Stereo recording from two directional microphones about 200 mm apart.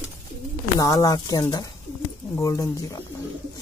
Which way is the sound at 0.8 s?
15° left (ahead or behind).